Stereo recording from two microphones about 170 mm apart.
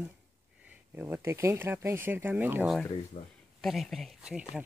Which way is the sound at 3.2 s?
45° left (ahead or behind).